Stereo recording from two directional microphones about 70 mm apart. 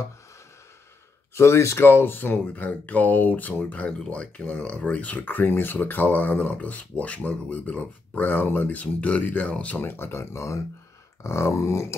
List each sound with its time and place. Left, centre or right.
1.3 s speech: left; by 9.8 s centre
9.8 s speech: left
11.2 s grunt: left